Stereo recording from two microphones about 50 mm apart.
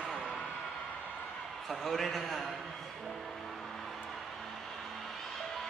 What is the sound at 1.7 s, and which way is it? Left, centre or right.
Speech, centre.